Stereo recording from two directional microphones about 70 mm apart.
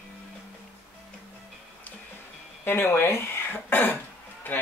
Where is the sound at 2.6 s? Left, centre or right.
Left.